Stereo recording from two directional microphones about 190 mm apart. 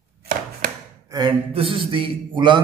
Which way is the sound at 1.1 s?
30° right (ahead or behind).